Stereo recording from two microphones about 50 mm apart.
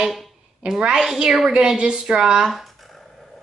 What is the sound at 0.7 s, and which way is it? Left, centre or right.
A woman's voice, centre.